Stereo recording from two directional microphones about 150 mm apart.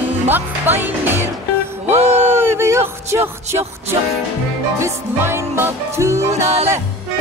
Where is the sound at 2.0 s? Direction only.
45° right (ahead or behind).